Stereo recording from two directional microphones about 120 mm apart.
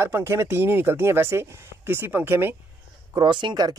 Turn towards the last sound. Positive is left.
turn(degrees=-35)  # may be behind; listen again after turning